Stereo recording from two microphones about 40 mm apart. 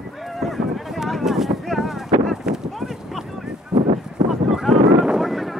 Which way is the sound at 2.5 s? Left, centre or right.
Right.